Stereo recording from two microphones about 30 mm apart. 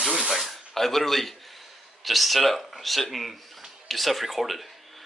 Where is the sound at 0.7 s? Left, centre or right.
Centre.